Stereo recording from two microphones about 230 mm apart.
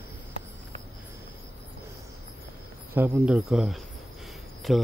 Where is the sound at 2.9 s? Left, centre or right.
Centre.